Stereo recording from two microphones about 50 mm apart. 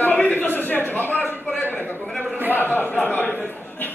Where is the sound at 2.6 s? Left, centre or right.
Left.